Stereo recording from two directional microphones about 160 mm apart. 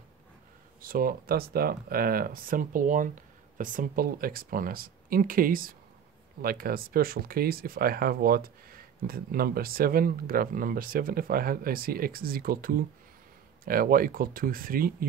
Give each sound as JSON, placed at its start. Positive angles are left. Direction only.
{"t": 0.7, "sound": "speech", "side_deg": -65}